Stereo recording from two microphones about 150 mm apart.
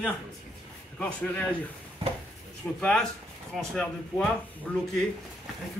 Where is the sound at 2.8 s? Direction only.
5° left (ahead or behind).